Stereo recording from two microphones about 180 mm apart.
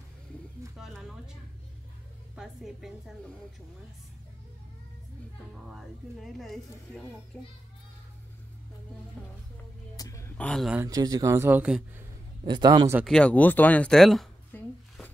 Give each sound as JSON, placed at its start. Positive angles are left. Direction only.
{"t": 0.7, "sound": "a sound", "side_deg": -5}
{"t": 2.3, "sound": "a woman's voice", "side_deg": 0}
{"t": 5.7, "sound": "a child's voice", "side_deg": 0}
{"t": 9.9, "sound": "a sound", "side_deg": 20}
{"t": 10.3, "sound": "speech", "side_deg": 5}
{"t": 10.8, "sound": "speech", "side_deg": -20}
{"t": 12.4, "sound": "a man's voice", "side_deg": -25}
{"t": 13.0, "sound": "speech", "side_deg": 5}